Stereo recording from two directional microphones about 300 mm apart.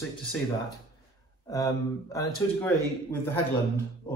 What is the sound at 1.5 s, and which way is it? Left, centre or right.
Speech, centre.